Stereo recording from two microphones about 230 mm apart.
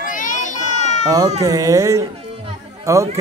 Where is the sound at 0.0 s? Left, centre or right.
Left.